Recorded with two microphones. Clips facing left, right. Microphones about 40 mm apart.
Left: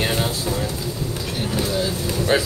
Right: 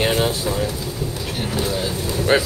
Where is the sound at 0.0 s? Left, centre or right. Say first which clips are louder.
Right 3 dB; centre.